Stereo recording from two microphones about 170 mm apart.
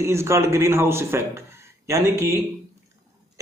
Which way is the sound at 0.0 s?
15° right (ahead or behind).